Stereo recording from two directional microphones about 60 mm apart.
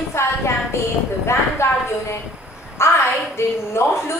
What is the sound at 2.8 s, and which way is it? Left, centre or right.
A woman's voice, left.